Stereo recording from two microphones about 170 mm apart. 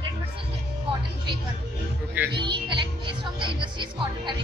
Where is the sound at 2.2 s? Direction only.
10° right (ahead or behind).